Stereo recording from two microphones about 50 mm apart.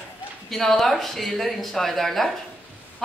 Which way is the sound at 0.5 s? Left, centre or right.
Centre.